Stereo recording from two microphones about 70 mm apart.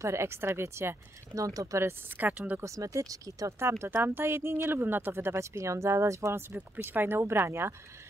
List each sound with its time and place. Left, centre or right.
0.0 s speech: right
1.3 s speech: right
1.8 s speech: right
2.1 s speech: right
2.6 s speech: right
3.8 s speech: right
6.9 s speech: right